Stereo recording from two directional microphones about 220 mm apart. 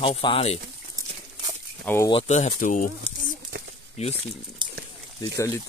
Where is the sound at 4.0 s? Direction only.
30° left (ahead or behind).